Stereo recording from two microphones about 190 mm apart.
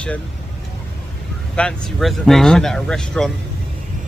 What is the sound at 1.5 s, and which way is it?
Speech, 5° left (ahead or behind).